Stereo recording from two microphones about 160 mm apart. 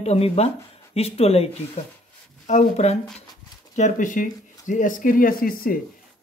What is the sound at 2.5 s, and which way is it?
Speech, 45° left (ahead or behind).